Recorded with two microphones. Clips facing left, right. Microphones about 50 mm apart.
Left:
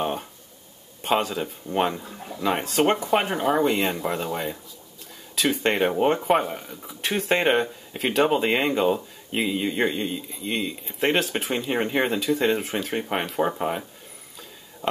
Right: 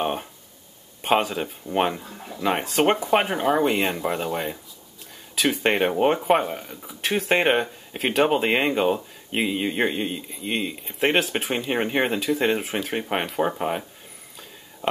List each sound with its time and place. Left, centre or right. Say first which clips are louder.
0.0 s speech: right 1 dB; centre